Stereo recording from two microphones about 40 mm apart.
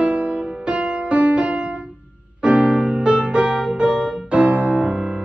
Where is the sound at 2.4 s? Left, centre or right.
Right.